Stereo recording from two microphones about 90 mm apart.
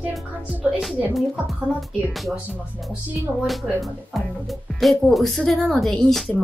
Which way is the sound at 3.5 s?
Centre (ahead or behind).